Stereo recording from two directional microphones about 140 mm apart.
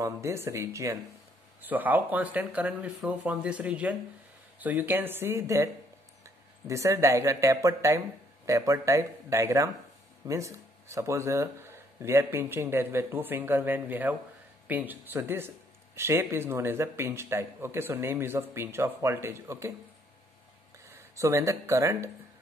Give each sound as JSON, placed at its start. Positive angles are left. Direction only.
{"t": 0.0, "sound": "speech", "side_deg": -20}
{"t": 21.2, "sound": "speech", "side_deg": -20}